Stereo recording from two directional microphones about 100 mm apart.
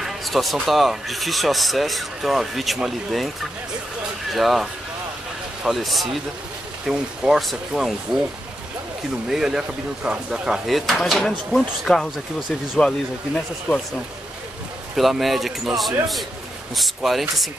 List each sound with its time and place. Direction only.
0.0 s speech: centre (ahead or behind)
4.3 s speech: centre (ahead or behind)
9.3 s speech: 5° right (ahead or behind)
15.0 s speech: centre (ahead or behind)